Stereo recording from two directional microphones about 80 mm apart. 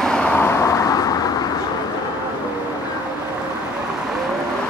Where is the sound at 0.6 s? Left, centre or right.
Left.